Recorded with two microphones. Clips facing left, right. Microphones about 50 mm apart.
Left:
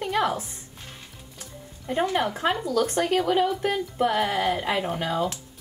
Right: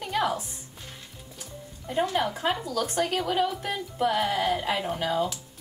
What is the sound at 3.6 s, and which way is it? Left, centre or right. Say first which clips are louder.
A woman's voice: left 4 dB; left.